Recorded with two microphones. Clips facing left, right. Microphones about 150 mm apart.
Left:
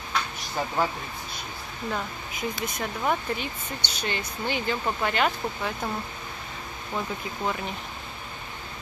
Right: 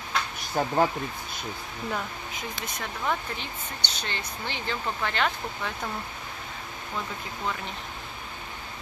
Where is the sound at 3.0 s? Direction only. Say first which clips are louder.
Left 3 dB; 15° left (ahead or behind).